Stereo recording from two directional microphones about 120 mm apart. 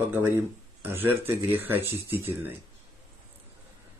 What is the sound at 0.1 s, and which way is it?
Speech, 20° right (ahead or behind).